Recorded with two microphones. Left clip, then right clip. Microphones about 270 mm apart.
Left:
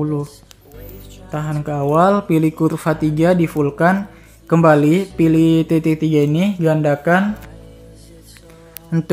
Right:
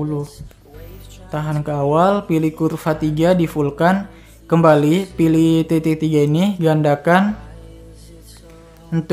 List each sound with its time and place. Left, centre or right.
0.0 s speech: centre
1.5 s speech: centre
8.9 s speech: centre